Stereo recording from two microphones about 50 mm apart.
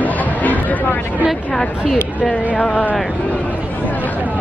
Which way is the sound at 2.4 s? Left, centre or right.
Left.